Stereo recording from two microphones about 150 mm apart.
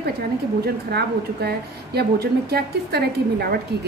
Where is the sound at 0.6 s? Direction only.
90° right.